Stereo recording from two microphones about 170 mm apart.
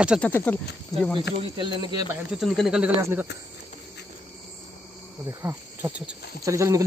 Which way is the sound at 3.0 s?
15° right (ahead or behind).